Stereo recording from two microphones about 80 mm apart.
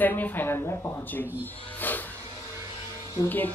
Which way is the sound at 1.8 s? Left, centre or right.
Left.